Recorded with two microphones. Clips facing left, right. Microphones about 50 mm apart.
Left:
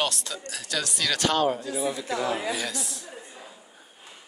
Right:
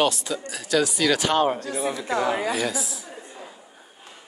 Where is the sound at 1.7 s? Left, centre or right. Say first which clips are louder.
Right 2 dB; right.